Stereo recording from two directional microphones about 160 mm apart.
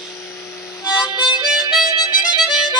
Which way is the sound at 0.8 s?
25° left (ahead or behind).